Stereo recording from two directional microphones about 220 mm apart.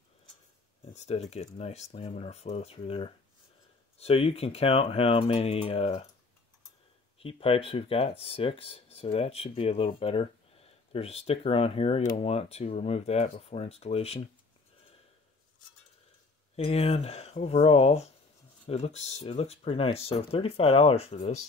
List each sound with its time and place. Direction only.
0.9 s speech: 30° left (ahead or behind)
7.2 s speech: 25° left (ahead or behind)
16.5 s speech: 30° left (ahead or behind)